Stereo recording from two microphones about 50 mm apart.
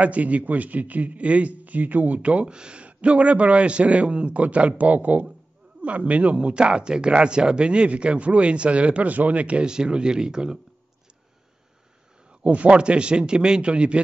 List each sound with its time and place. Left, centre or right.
0.0 s a man's voice: right
12.4 s a man's voice: right